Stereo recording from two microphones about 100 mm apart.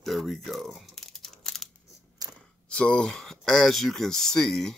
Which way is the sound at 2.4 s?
10° left (ahead or behind).